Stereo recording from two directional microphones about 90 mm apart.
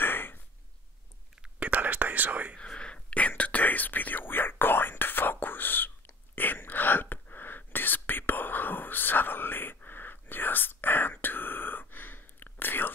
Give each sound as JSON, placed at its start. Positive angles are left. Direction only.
{"t": 0.0, "sound": "a sound", "side_deg": 25}
{"t": 1.4, "sound": "whispering", "side_deg": -15}
{"t": 2.5, "sound": "whispering", "side_deg": 10}